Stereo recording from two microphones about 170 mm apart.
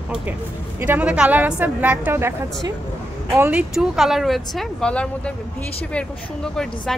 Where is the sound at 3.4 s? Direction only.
10° right (ahead or behind).